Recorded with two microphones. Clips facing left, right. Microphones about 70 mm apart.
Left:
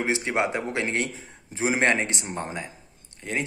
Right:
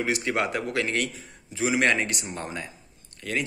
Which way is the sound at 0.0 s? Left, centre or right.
Left.